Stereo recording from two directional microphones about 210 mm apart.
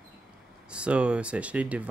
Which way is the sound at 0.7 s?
5° right (ahead or behind).